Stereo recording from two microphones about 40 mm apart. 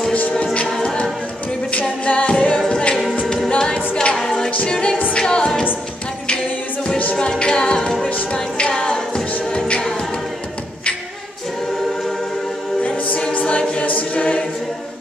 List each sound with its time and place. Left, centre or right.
1.7 s a capella: left
2.7 s music: left
3.4 s a capella: left
4.2 s a capella: centre
4.6 s a capella: left
7.2 s music: centre
12.8 s choir: left